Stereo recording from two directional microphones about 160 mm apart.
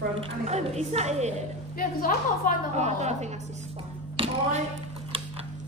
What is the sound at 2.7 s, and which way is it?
Speech, 45° right (ahead or behind).